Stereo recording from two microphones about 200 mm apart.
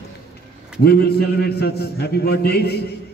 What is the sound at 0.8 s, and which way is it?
A man's voice, 55° left (ahead or behind).